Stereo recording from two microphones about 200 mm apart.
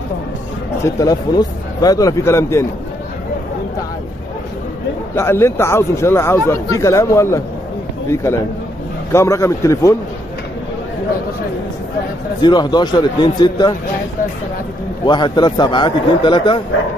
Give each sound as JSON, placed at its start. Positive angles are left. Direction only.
{"t": 0.9, "sound": "speech", "side_deg": 20}
{"t": 5.1, "sound": "speech", "side_deg": 10}
{"t": 12.4, "sound": "a man's voice", "side_deg": 20}
{"t": 15.0, "sound": "a man's voice", "side_deg": 20}